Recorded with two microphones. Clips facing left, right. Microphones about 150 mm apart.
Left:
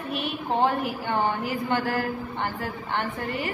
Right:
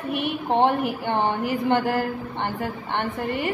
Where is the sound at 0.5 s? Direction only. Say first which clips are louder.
Right 3 dB; 65° right (ahead or behind).